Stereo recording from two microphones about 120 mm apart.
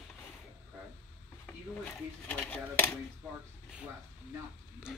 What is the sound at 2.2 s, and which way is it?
Speech, 15° left (ahead or behind).